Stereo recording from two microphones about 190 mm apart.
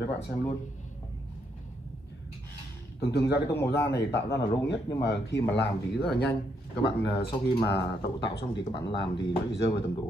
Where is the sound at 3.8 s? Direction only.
60° left (ahead or behind).